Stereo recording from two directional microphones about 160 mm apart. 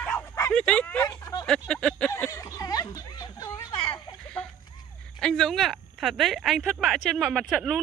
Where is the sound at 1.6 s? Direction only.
5° left (ahead or behind).